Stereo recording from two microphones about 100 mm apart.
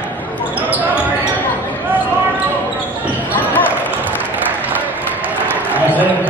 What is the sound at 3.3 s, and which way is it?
Basketball bounce, 20° left (ahead or behind).